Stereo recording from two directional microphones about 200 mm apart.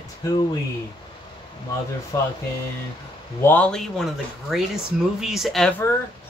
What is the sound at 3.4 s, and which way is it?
Speech, 5° left (ahead or behind).